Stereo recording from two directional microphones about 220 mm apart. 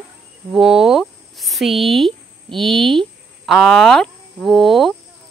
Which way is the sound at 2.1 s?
25° right (ahead or behind).